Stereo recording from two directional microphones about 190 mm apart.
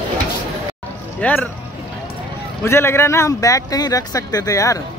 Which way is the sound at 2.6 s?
15° left (ahead or behind).